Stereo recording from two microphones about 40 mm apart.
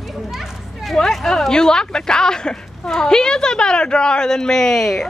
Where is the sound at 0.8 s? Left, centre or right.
Centre.